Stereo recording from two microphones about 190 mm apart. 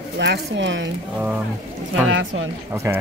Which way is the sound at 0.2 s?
70° right (ahead or behind).